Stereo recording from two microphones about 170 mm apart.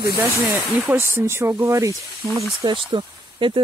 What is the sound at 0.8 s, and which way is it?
Speech, 15° right (ahead or behind).